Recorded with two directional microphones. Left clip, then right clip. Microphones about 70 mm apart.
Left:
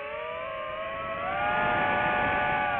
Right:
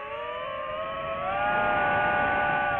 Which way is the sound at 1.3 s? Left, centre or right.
Right.